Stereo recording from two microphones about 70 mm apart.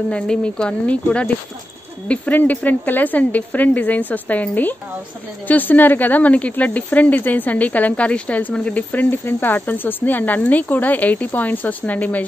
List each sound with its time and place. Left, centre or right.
0.1 s speech: centre